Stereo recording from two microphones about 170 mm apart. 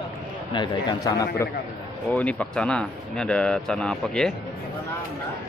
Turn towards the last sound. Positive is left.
turn(degrees=5)  # may be behind; listen again after turning